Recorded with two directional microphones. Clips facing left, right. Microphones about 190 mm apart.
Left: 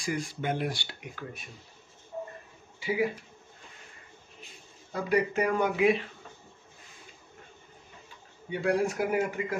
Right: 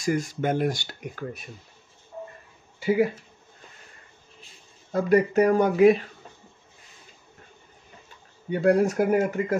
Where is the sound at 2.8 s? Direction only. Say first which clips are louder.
Right 7 dB; 50° right (ahead or behind).